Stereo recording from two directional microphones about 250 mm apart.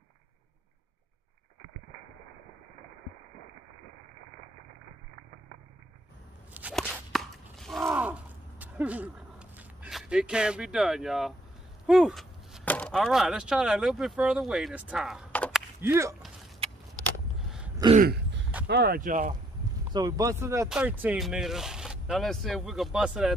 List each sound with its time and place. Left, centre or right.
6.5 s walk: centre
6.8 s a sound: centre
11.9 s speech: centre
15.8 s speech: centre
17.4 s a sound: centre
17.9 s throat clearing: right
18.7 s speech: right
19.9 s speech: centre